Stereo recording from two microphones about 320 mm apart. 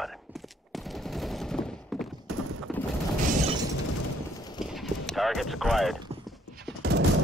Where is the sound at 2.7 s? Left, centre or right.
Centre.